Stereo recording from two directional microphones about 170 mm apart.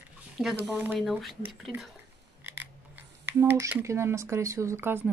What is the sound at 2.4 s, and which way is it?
Speech, 10° right (ahead or behind).